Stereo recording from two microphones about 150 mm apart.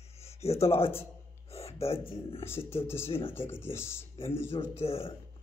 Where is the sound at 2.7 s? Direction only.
15° left (ahead or behind).